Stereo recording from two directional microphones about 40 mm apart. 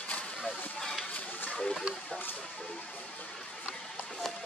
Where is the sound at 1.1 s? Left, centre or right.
Left.